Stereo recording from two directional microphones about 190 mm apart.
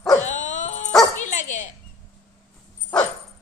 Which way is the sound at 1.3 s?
40° left (ahead or behind).